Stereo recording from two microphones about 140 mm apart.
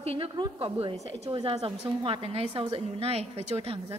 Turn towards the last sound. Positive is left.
turn(degrees=-45)  # may be behind; listen again after turning